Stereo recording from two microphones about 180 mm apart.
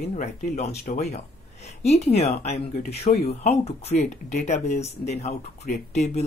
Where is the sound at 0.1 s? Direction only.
40° left (ahead or behind).